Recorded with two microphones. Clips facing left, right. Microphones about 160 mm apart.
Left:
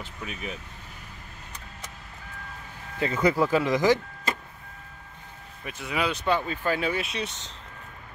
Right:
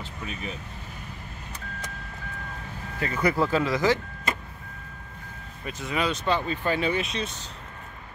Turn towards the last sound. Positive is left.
turn(degrees=5)  # may be behind; listen again after turning